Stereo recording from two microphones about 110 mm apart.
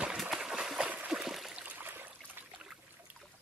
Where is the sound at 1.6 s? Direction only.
15° right (ahead or behind).